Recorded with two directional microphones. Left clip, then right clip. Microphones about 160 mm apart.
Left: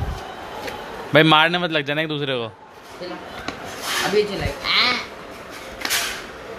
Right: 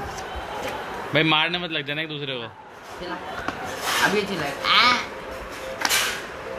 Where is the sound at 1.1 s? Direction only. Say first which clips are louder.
Left 6 dB; 35° left (ahead or behind).